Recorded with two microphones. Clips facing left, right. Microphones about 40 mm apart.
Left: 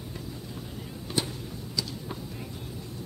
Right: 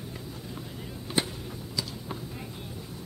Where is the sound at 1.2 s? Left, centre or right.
Right.